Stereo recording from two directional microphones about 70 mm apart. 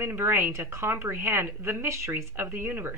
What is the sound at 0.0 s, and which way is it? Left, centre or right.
A woman's voice, right.